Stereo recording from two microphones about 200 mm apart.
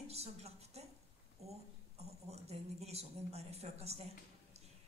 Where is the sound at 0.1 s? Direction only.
30° right (ahead or behind).